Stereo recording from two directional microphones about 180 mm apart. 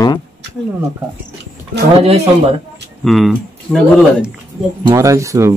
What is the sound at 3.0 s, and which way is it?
Speech, centre (ahead or behind).